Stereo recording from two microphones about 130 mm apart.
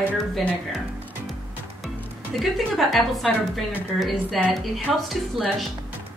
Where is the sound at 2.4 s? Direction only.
Centre (ahead or behind).